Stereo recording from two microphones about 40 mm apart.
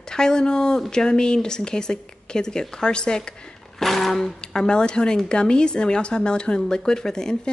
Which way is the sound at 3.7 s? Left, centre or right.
Centre.